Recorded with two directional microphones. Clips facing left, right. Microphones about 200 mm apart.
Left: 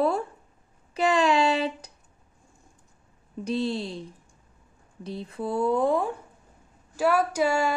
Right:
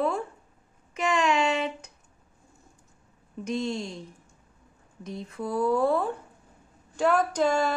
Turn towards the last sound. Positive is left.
turn(degrees=10)  # may be behind; listen again after turning